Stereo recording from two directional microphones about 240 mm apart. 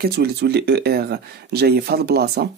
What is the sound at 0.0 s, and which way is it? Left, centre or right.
Speech, right.